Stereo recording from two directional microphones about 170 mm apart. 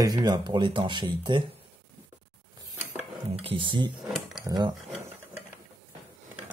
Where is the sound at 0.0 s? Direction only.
20° right (ahead or behind).